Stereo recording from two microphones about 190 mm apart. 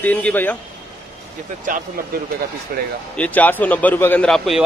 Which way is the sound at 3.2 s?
10° left (ahead or behind).